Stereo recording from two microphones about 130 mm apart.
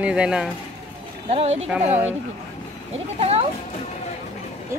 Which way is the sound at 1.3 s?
55° right (ahead or behind).